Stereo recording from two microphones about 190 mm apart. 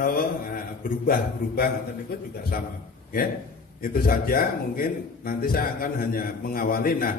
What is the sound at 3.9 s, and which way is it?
A man's voice, 50° left (ahead or behind).